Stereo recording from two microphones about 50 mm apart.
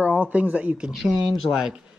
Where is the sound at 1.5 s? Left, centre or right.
Centre.